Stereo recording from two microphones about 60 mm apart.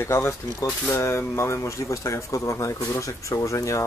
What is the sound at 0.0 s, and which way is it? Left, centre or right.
Speech, left.